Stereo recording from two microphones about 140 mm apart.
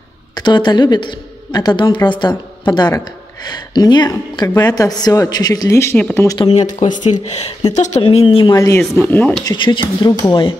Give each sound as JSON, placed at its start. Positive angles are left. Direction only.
{"t": 0.3, "sound": "a woman's voice", "side_deg": 30}
{"t": 6.5, "sound": "speech", "side_deg": 55}
{"t": 8.5, "sound": "speech", "side_deg": 20}
{"t": 9.4, "sound": "a woman's voice", "side_deg": 30}